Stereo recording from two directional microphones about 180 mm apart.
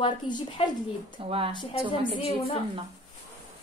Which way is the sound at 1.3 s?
30° right (ahead or behind).